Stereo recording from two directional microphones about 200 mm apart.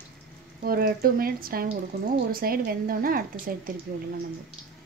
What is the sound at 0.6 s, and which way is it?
Speech, 45° right (ahead or behind).